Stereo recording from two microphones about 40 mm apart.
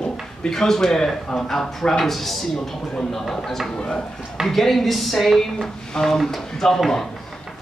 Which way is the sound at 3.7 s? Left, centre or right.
Left.